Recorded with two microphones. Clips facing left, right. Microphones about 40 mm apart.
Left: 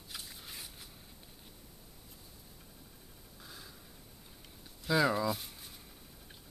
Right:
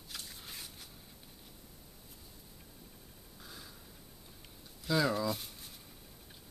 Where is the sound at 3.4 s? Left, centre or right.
Centre.